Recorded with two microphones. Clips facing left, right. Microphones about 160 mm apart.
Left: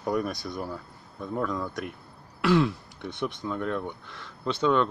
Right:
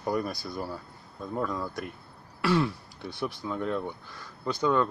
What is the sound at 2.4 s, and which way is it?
Throat clearing, centre (ahead or behind).